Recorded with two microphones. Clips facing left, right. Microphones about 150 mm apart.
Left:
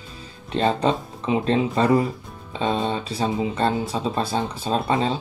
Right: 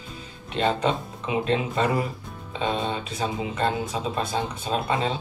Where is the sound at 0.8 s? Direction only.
35° left (ahead or behind).